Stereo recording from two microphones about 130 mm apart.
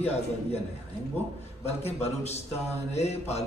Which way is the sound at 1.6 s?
55° left (ahead or behind).